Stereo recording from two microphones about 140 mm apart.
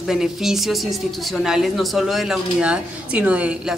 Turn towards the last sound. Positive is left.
turn(degrees=-10)  # may be behind; listen again after turning